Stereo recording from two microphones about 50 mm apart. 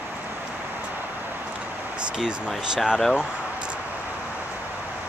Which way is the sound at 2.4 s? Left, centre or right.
Centre.